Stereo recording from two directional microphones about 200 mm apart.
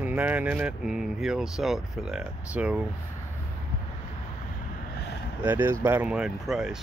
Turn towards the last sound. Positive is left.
turn(degrees=0)  # may be behind; listen again after turning